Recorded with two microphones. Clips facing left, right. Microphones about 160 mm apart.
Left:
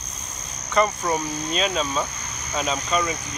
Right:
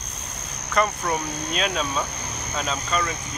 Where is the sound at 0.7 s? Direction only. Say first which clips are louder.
Left 2 dB; 10° left (ahead or behind).